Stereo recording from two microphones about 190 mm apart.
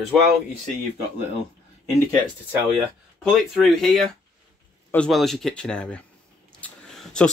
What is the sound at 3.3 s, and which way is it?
Speech, centre (ahead or behind).